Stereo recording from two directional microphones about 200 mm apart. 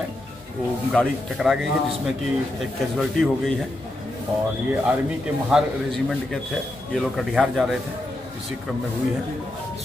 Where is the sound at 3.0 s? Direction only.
Centre (ahead or behind).